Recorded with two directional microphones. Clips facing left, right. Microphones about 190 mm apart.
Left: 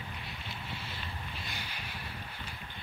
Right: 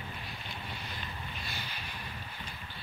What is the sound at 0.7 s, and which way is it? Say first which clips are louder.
Vehicle: even; 25° left (ahead or behind).